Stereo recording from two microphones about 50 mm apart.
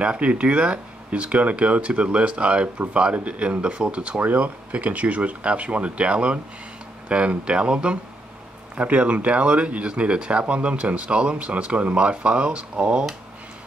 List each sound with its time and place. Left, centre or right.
0.0 s speech: right